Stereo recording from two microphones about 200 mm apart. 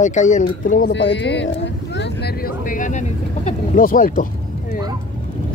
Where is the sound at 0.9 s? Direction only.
65° left (ahead or behind).